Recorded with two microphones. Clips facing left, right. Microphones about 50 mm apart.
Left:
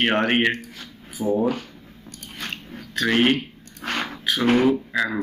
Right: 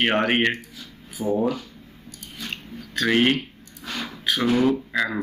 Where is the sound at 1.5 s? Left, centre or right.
Left.